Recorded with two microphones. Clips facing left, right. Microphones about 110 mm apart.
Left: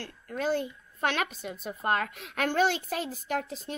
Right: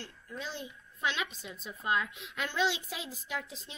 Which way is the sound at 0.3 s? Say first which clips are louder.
Left 12 dB; 55° left (ahead or behind).